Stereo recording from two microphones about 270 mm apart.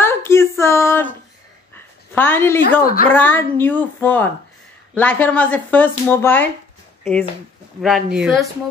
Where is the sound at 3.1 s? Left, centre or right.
Centre.